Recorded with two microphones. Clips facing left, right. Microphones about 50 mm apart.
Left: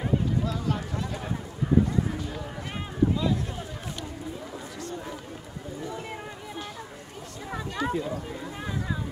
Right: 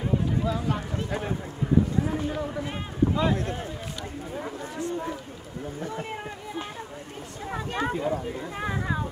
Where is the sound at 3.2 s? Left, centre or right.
Right.